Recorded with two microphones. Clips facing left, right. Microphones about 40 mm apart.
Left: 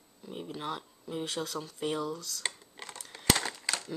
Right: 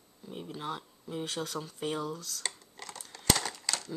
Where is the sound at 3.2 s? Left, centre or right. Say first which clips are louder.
Left 1 dB; centre.